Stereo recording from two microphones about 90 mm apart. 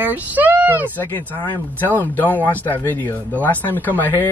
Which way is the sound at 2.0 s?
20° left (ahead or behind).